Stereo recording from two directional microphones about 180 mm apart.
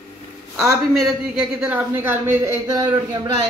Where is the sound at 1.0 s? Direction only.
5° right (ahead or behind).